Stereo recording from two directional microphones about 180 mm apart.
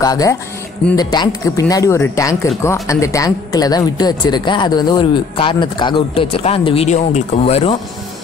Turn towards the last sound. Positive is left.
turn(degrees=35)  # may be behind; listen again after turning